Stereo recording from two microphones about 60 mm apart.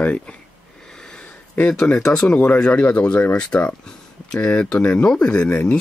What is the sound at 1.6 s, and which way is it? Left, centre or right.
Speech, left.